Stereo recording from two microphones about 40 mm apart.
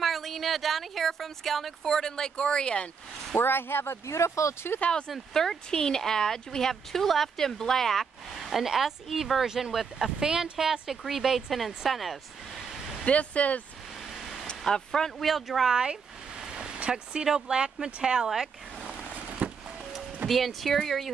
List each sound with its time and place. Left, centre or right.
0.0 s speech: centre; by 2.9 s left
3.3 s speech: left
5.3 s speech: centre
13.0 s speech: left
14.6 s speech: centre
15.2 s speech: centre
15.7 s speech: right
19.1 s a sound: right
20.2 s speech: centre